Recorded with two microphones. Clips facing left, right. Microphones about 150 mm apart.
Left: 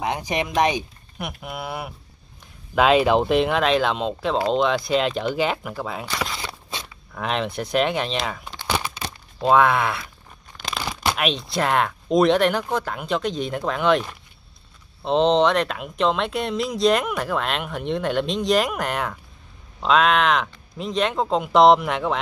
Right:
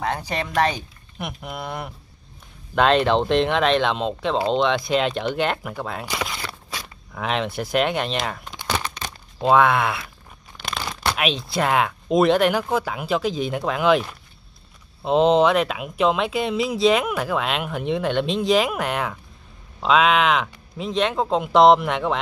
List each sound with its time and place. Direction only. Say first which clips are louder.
0.0 s speech: left 1 dB; 15° left (ahead or behind)
1.1 s speech: even; centre (ahead or behind)
6.1 s a sound: even; centre (ahead or behind)
6.4 s a sound: even; 20° left (ahead or behind)
7.2 s speech: even; centre (ahead or behind)
8.6 s crumpling: left 1 dB; 10° left (ahead or behind)
9.4 s speech: even; centre (ahead or behind)
10.6 s crumpling: left 1 dB; 5° left (ahead or behind)
11.1 s speech: right 3 dB; centre (ahead or behind)
15.0 s speech: right 1 dB; 5° right (ahead or behind)